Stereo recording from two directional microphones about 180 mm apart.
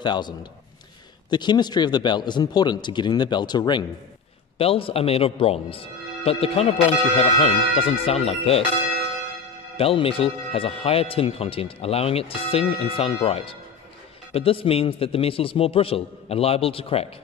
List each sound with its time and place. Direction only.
0.0 s speech: 25° left (ahead or behind)
9.8 s speech: 30° left (ahead or behind)